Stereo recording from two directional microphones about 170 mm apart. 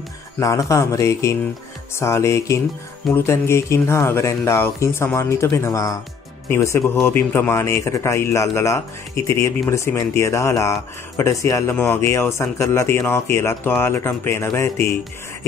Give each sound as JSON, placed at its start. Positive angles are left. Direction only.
{"t": 0.4, "sound": "speech", "side_deg": 20}